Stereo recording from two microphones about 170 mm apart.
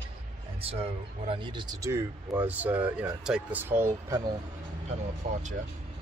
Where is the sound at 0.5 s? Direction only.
35° right (ahead or behind); by 4.3 s 20° right (ahead or behind).